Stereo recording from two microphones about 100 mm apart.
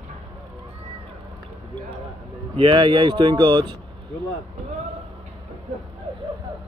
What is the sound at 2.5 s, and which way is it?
Speech, 60° right (ahead or behind).